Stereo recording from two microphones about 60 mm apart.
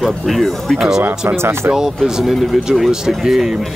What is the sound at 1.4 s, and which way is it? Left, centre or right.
Speech, right.